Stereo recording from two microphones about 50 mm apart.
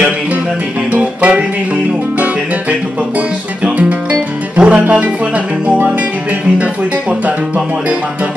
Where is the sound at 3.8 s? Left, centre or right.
Right.